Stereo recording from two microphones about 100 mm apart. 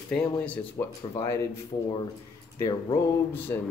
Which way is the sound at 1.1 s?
30° left (ahead or behind).